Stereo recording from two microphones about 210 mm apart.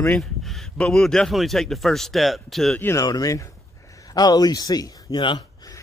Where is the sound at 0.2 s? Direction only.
Centre (ahead or behind).